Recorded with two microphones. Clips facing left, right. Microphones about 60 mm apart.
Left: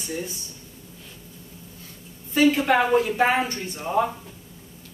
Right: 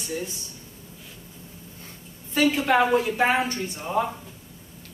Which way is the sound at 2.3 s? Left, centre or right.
Centre.